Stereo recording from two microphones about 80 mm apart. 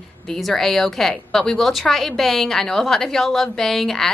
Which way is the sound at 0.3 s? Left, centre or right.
Centre.